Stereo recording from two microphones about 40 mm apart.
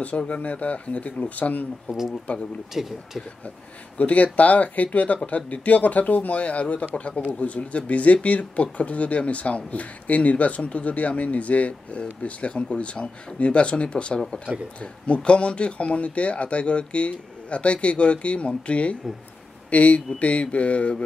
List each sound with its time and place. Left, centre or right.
0.0 s speech: left
2.7 s speech: centre
4.0 s speech: left